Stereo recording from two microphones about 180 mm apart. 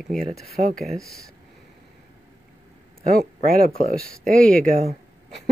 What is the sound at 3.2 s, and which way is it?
Speech, 55° right (ahead or behind).